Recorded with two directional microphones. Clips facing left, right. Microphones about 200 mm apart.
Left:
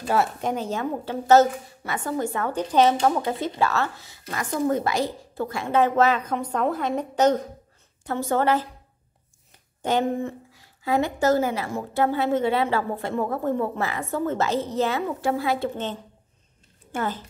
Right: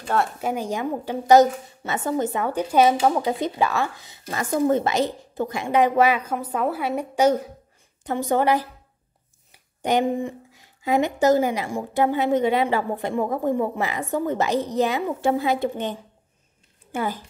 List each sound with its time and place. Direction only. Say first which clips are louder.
0.4 s speech: right 1 dB; 10° right (ahead or behind)